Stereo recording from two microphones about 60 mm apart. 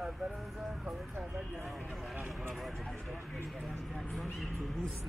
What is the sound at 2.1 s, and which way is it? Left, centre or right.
Speech, right.